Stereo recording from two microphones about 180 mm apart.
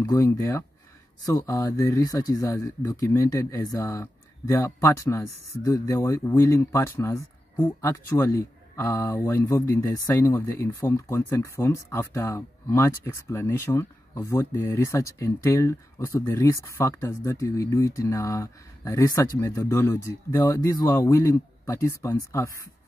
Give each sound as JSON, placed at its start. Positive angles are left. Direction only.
{"t": 0.0, "sound": "speech", "side_deg": 15}